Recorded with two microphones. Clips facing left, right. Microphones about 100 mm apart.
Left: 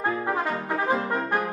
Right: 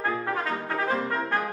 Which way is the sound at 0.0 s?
20° left (ahead or behind).